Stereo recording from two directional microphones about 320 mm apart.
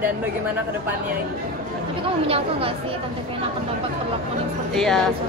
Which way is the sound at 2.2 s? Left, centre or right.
Centre.